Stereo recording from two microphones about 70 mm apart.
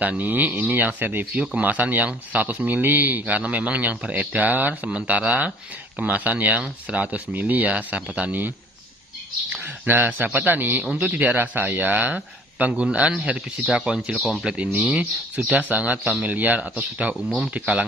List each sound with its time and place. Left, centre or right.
0.0 s speech: right
9.8 s speech: right
17.1 s speech: centre